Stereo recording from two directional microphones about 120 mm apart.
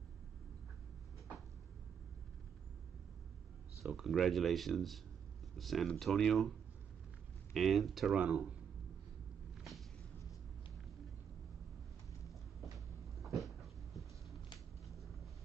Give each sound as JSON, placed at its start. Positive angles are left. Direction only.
{"t": 3.8, "sound": "speech", "side_deg": 0}
{"t": 7.5, "sound": "speech", "side_deg": 0}
{"t": 9.6, "sound": "a sound", "side_deg": 0}
{"t": 12.7, "sound": "cupboard open or close", "side_deg": 0}